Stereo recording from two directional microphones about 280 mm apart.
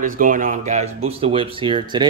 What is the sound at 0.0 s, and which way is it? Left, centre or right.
Speech, right.